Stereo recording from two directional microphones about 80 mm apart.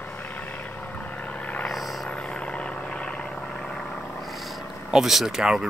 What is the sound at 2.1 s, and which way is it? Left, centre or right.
Vehicle, centre.